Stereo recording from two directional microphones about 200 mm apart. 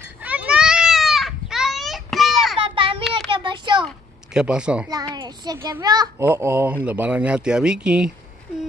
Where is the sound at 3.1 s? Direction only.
25° right (ahead or behind).